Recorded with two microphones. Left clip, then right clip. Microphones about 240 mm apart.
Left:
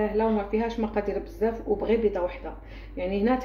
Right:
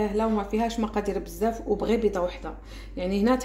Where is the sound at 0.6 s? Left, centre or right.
Right.